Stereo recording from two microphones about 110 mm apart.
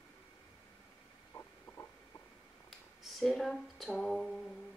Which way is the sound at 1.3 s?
40° left (ahead or behind).